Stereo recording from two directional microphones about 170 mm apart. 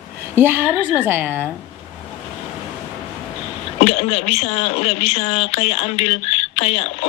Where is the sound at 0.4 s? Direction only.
15° right (ahead or behind).